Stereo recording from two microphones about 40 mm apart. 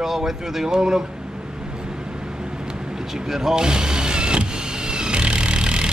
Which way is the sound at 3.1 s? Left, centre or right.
Centre.